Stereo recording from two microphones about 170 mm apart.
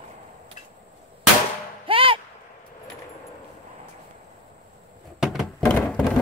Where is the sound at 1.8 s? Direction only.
30° right (ahead or behind).